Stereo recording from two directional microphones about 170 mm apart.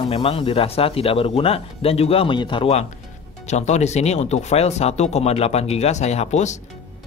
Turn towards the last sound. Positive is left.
turn(degrees=45)  # may be behind; listen again after turning